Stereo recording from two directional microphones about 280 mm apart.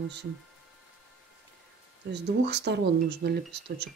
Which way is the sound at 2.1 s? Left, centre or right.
Right.